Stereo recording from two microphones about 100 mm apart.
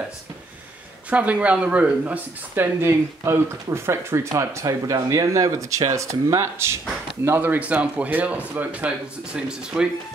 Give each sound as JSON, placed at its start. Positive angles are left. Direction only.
{"t": 1.1, "sound": "speech", "side_deg": -15}